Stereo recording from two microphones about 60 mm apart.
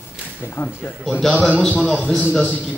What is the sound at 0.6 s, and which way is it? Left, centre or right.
Speech, left.